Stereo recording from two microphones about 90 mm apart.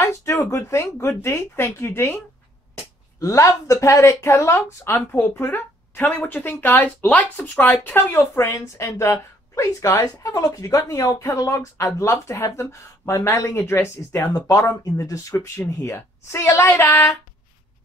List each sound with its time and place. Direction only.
0.0 s speech: 35° left (ahead or behind)
3.2 s speech: 35° left (ahead or behind)
14.2 s a woman's voice: 40° left (ahead or behind)